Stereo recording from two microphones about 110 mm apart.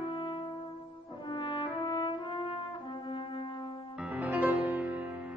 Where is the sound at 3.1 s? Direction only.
50° left (ahead or behind).